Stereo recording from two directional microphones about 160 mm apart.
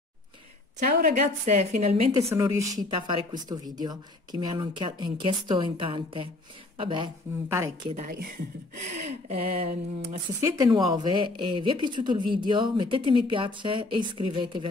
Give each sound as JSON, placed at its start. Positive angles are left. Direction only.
{"t": 1.1, "sound": "a woman's voice", "side_deg": -45}
{"t": 2.3, "sound": "speech", "side_deg": -20}
{"t": 2.9, "sound": "speech", "side_deg": -30}
{"t": 7.4, "sound": "a woman's voice", "side_deg": -15}
{"t": 7.9, "sound": "speech", "side_deg": -55}
{"t": 8.9, "sound": "a woman's voice", "side_deg": -45}
{"t": 10.4, "sound": "speech", "side_deg": -20}